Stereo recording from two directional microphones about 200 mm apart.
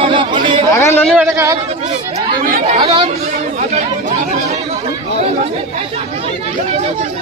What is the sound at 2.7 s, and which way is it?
Speech, 25° right (ahead or behind).